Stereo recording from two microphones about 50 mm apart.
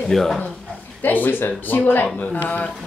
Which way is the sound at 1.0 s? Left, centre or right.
Left.